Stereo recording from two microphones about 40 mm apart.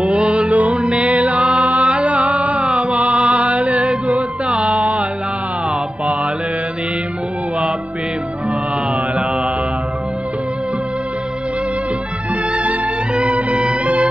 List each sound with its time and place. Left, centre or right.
0.1 s music: right
12.5 s music: right